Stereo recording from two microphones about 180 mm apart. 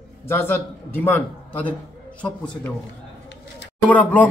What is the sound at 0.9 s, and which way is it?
A man's voice, 10° left (ahead or behind).